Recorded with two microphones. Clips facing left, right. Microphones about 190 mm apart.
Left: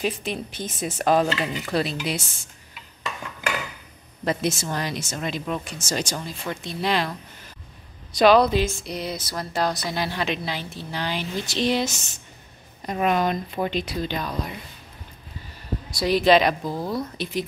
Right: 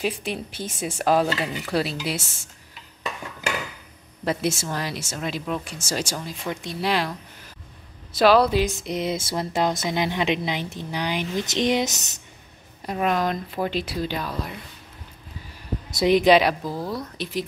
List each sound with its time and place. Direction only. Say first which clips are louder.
0.0 s speech: even; 10° right (ahead or behind)
4.2 s speech: even; 5° right (ahead or behind)
11.9 s speech: even; 40° right (ahead or behind)
12.8 s speech: left 1 dB; centre (ahead or behind)
16.0 s speech: right 1 dB; 20° right (ahead or behind); by 17.4 s centre (ahead or behind)